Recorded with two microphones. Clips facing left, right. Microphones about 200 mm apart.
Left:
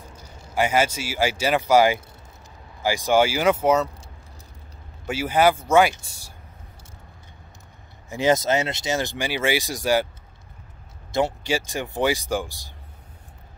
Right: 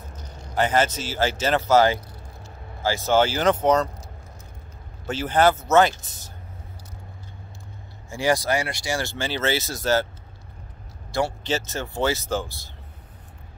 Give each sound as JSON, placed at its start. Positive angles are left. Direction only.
{"t": 0.1, "sound": "speech", "side_deg": 10}
{"t": 5.0, "sound": "speech", "side_deg": 10}
{"t": 8.1, "sound": "speech", "side_deg": 20}
{"t": 11.1, "sound": "speech", "side_deg": 20}